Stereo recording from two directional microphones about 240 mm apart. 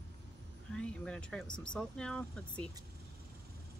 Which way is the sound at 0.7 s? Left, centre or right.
Centre.